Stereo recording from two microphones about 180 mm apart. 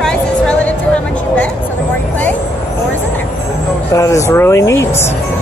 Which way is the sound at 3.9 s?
15° left (ahead or behind).